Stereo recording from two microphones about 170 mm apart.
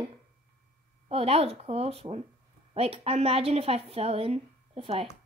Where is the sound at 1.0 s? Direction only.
35° right (ahead or behind).